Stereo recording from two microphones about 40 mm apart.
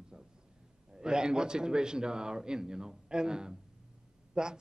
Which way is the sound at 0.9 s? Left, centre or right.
Centre.